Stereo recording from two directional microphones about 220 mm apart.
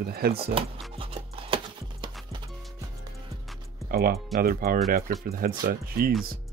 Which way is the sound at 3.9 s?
45° right (ahead or behind).